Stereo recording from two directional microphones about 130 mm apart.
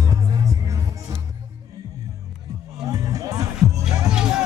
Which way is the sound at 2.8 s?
25° right (ahead or behind).